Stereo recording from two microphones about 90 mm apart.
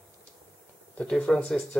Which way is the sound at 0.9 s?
10° left (ahead or behind).